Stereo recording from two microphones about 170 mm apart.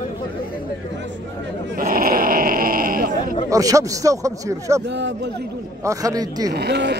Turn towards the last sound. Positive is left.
turn(degrees=-90)